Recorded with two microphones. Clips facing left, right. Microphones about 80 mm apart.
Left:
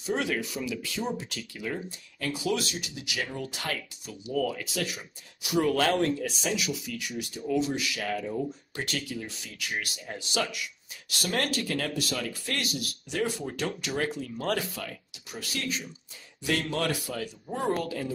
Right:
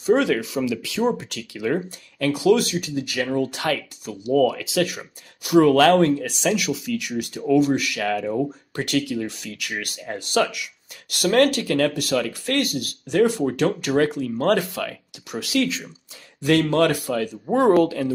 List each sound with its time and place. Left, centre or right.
0.0 s speech: right
16.4 s speech: right